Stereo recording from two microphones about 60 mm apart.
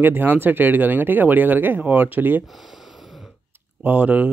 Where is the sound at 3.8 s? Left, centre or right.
Right.